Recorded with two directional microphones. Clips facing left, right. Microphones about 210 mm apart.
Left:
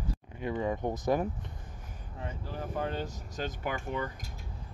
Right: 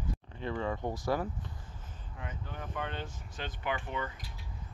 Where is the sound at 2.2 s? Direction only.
35° left (ahead or behind).